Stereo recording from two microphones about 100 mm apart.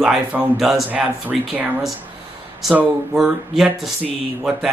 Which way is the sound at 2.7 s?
15° right (ahead or behind).